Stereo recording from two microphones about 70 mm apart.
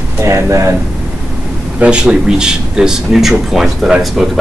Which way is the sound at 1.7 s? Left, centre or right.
Centre.